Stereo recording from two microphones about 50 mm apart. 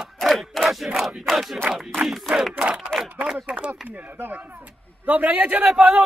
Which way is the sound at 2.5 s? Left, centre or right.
Right.